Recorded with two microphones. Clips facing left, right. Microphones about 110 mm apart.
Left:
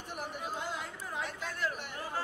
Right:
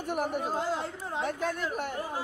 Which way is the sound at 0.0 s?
55° right (ahead or behind).